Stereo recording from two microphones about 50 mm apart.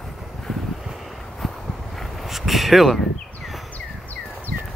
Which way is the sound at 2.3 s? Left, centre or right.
Centre.